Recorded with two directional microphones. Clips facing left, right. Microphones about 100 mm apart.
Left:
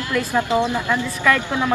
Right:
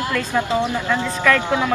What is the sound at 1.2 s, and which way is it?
Speech, 15° left (ahead or behind).